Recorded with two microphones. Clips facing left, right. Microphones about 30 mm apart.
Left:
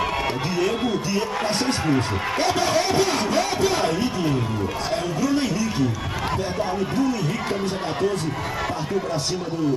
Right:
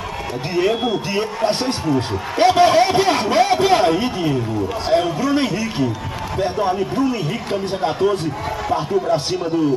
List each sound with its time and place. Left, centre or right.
0.6 s speech: right